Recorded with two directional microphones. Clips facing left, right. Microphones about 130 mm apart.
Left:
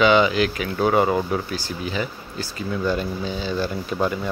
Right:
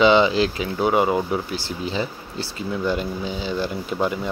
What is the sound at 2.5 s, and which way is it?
Speech, 20° right (ahead or behind).